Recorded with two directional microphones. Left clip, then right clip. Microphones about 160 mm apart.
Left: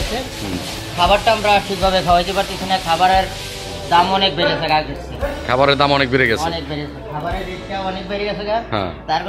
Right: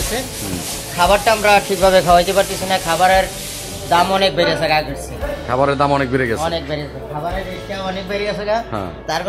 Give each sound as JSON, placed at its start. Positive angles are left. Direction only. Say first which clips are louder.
{"t": 0.9, "sound": "speech", "louder": "right 1 dB", "side_deg": -30}
{"t": 1.8, "sound": "speech", "louder": "right 3 dB", "side_deg": -50}
{"t": 5.5, "sound": "a man's voice", "louder": "left 1 dB", "side_deg": -15}